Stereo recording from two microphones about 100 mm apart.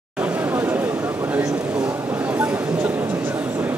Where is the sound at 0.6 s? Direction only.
20° right (ahead or behind).